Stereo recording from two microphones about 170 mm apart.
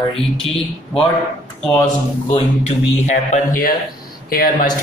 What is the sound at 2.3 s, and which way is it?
Speech, 40° left (ahead or behind).